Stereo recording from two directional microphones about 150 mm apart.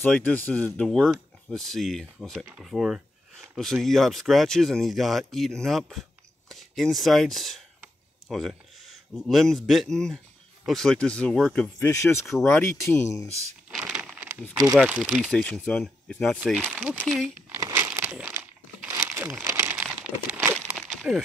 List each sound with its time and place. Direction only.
0.0 s speech: 10° left (ahead or behind)
11.9 s speech: 20° left (ahead or behind)
12.3 s speech: centre (ahead or behind)
12.5 s speech: 20° left (ahead or behind)
13.7 s a sound: 5° right (ahead or behind)
14.8 s speech: 10° right (ahead or behind)
15.3 s speech: 5° left (ahead or behind)
16.6 s speech: 10° right (ahead or behind)
17.5 s crumpling: 20° right (ahead or behind)
20.6 s a sound: 5° right (ahead or behind)